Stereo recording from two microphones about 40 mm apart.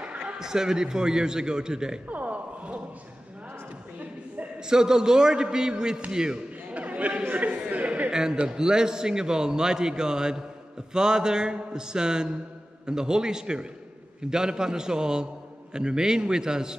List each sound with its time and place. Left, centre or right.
0.4 s a man's voice: centre
2.0 s a sound: right
4.6 s a man's voice: centre
6.7 s chatter: right
7.4 s speech: right
8.1 s a man's voice: centre